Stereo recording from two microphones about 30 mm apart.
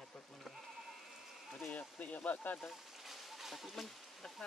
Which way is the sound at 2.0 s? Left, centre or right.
Left.